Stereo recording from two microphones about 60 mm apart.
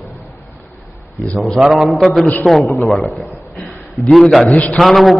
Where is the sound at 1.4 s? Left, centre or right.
Centre.